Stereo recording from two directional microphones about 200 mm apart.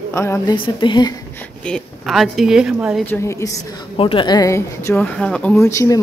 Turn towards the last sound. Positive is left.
turn(degrees=15)  # may be behind; listen again after turning